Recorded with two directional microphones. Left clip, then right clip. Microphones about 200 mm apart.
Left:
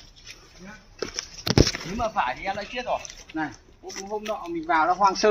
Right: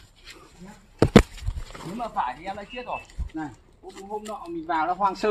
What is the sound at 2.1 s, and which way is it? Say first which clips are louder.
Speech: even; 40° left (ahead or behind).